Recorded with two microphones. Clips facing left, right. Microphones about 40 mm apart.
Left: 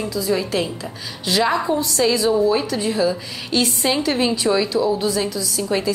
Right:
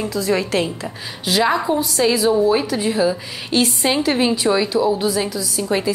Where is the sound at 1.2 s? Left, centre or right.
Centre.